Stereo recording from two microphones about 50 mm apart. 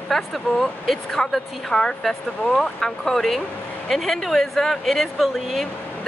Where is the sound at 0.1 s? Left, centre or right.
Centre.